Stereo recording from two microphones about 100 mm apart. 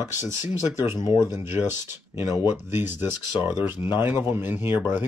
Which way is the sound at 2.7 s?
25° right (ahead or behind).